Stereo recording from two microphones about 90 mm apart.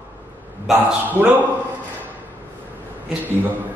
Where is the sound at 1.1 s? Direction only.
20° right (ahead or behind).